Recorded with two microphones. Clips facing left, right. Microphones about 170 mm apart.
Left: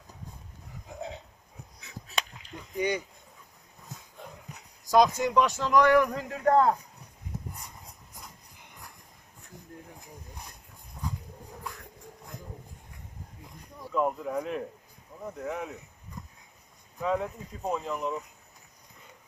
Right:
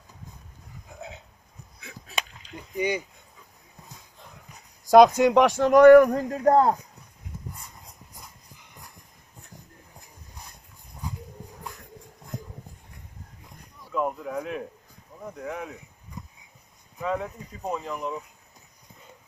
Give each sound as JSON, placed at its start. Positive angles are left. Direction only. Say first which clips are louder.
{"t": 1.8, "sound": "honk", "louder": "right 3 dB", "side_deg": -60}
{"t": 2.5, "sound": "a sound", "louder": "right 2 dB", "side_deg": -10}
{"t": 4.9, "sound": "a man's voice", "louder": "right 7 dB", "side_deg": -70}
{"t": 13.9, "sound": "a sound", "louder": "even", "side_deg": 0}
{"t": 15.2, "sound": "speech", "louder": "even", "side_deg": 0}
{"t": 17.0, "sound": "speech", "louder": "even", "side_deg": 0}